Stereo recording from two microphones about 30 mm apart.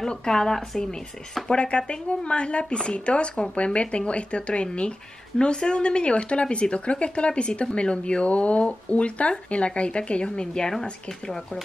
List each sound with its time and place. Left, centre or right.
0.1 s speech: left
1.5 s speech: left
8.3 s speech: left
10.7 s speech: centre